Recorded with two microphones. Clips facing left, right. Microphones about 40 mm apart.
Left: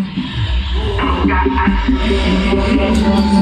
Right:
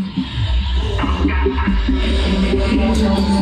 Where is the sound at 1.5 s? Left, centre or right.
Left.